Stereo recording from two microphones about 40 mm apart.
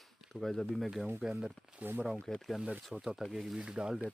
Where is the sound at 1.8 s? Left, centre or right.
Right.